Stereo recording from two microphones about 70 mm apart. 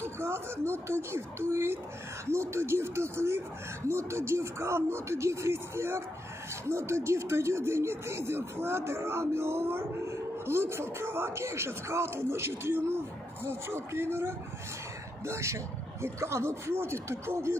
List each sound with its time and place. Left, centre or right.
0.0 s speech: right